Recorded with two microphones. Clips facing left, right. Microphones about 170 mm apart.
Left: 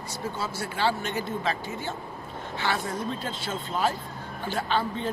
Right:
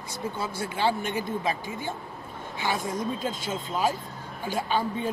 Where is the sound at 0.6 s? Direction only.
15° right (ahead or behind).